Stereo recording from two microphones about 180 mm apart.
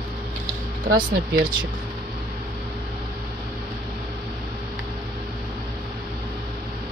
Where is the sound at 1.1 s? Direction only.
55° right (ahead or behind).